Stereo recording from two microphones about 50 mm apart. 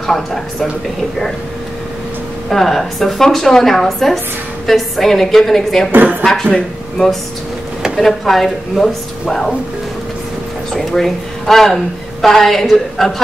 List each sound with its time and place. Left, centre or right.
0.0 s speech: centre
2.5 s a woman's voice: centre
5.9 s speech: right
6.2 s a woman's voice: centre
10.7 s a woman's voice: centre